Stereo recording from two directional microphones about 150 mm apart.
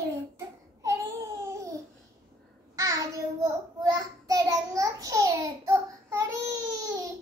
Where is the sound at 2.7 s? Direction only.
20° right (ahead or behind).